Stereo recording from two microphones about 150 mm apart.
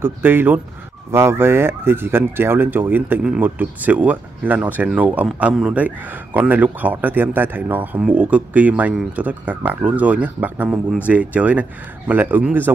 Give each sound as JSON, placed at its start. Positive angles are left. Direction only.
{"t": 0.0, "sound": "speech", "side_deg": -15}